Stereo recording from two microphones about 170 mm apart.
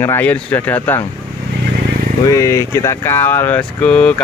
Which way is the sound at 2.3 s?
20° left (ahead or behind).